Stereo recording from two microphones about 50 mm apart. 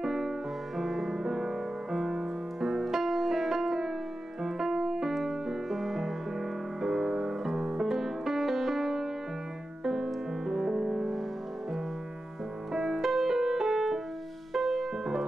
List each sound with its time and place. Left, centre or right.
0.0 s music: centre
12.7 s music: centre